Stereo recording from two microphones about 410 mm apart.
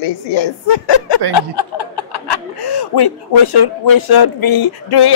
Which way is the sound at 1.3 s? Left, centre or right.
Left.